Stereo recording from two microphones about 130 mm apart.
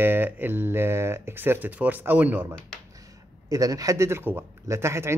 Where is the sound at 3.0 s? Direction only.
25° right (ahead or behind).